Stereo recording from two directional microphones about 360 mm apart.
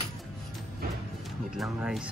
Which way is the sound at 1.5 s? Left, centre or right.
Centre.